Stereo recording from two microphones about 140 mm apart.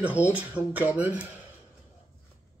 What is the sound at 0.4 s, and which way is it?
Speech, 10° right (ahead or behind).